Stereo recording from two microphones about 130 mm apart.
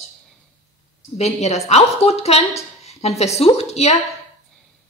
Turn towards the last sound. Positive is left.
turn(degrees=55)  # may be behind; listen again after turning